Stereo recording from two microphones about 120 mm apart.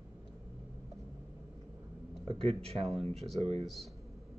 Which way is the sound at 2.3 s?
55° right (ahead or behind).